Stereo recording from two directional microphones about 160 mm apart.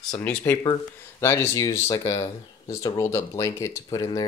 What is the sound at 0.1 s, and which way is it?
Speech, 10° left (ahead or behind).